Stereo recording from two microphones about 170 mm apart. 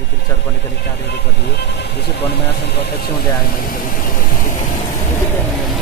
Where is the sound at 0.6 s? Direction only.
80° left; by 4.7 s 50° left (ahead or behind).